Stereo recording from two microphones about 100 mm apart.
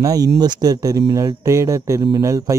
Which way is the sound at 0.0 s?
40° right (ahead or behind).